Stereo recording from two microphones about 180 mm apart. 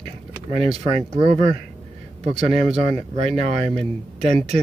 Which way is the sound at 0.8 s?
25° right (ahead or behind).